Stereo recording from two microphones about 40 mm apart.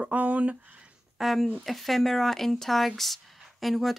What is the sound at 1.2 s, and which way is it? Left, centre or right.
Speech, centre.